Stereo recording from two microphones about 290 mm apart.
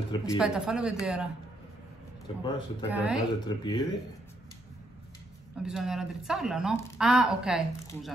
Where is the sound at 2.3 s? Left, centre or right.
Centre.